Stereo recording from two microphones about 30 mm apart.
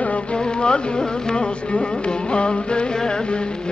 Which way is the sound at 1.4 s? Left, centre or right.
Left.